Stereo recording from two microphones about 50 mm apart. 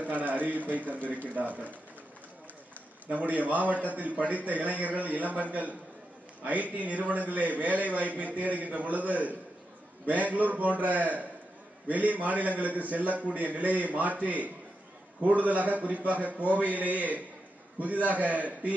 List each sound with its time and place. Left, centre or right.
0.0 s a man's voice: right
3.1 s a man's voice: right